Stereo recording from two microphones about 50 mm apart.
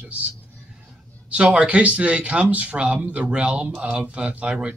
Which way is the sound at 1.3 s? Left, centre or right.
Right.